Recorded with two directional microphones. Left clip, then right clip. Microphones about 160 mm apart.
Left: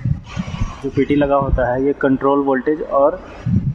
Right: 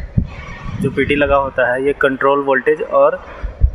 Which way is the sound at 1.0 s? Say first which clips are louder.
Right 2 dB; 10° right (ahead or behind).